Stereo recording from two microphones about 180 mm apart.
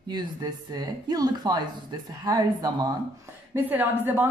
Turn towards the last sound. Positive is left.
turn(degrees=-10)  # may be behind; listen again after turning